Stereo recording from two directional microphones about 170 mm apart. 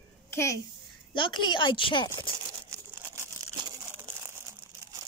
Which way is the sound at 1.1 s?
30° left (ahead or behind).